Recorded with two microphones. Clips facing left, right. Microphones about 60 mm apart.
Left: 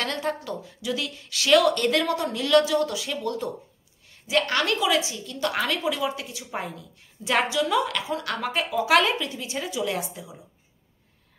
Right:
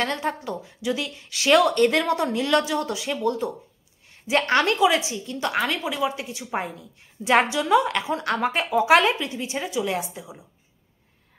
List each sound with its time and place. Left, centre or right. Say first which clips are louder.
0.0 s speech: right 2 dB; centre
4.3 s a woman's voice: right 3 dB; right; by 10.4 s centre